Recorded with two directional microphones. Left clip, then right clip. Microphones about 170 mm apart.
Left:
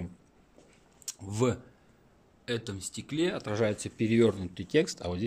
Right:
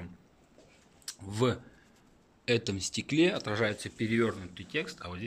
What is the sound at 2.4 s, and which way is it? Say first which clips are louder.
Speech: right 5 dB; 10° right (ahead or behind).